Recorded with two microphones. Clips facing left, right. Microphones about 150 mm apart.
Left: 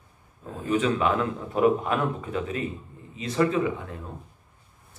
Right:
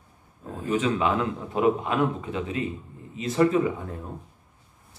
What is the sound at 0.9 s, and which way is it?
Speech, 20° right (ahead or behind).